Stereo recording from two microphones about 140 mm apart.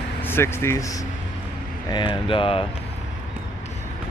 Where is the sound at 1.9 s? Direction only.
35° left (ahead or behind).